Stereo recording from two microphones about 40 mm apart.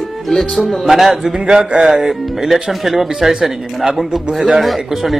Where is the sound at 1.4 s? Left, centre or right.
Right.